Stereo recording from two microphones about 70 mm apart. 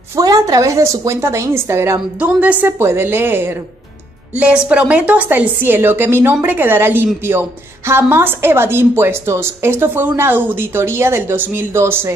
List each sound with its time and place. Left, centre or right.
0.1 s a woman's voice: right
2.2 s a woman's voice: right
4.6 s a woman's voice: centre; by 12.1 s right